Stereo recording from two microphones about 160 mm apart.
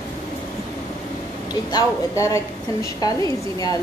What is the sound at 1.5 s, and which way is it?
A woman's voice, 25° left (ahead or behind).